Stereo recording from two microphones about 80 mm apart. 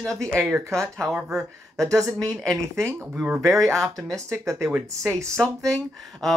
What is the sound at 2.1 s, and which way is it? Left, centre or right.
Speech, centre.